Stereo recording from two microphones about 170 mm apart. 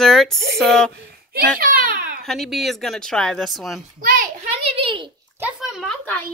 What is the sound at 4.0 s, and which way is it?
Speech, 55° right (ahead or behind).